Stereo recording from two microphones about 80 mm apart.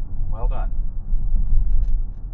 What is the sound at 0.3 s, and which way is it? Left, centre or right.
Vehicle, left.